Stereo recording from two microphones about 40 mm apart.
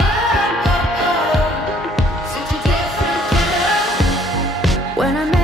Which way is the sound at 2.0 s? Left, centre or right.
Centre.